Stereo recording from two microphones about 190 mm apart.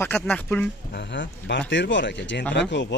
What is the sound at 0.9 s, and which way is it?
Speech, 65° left (ahead or behind).